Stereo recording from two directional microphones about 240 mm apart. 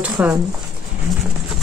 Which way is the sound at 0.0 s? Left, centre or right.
Centre.